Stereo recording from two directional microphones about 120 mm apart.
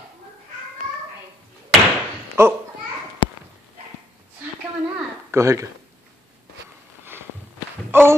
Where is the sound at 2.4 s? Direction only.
20° right (ahead or behind).